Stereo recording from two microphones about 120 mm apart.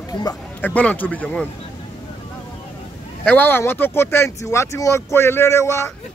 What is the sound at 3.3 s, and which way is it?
Speech, 15° left (ahead or behind).